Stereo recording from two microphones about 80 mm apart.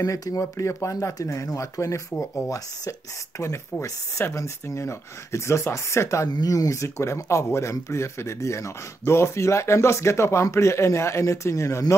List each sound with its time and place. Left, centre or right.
0.0 s speech: left